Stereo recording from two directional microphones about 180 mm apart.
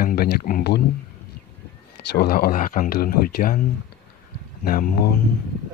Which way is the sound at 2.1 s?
60° left (ahead or behind).